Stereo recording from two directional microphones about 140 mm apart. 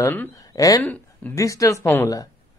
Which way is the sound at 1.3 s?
25° left (ahead or behind).